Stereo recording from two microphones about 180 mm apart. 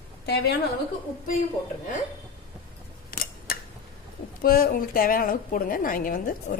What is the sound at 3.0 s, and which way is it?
Camera, 55° left (ahead or behind).